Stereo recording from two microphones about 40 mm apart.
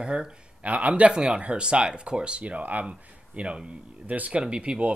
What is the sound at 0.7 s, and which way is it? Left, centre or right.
Speech, right.